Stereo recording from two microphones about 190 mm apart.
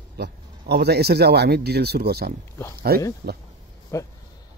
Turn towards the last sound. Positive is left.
turn(degrees=15)  # may be behind; listen again after turning